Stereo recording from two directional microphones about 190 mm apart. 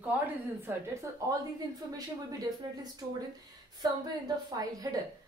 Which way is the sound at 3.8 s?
20° right (ahead or behind).